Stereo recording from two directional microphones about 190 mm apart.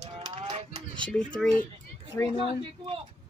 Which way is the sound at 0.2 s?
30° right (ahead or behind).